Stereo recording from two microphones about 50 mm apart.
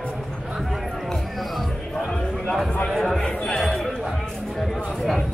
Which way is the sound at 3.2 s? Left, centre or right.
Left.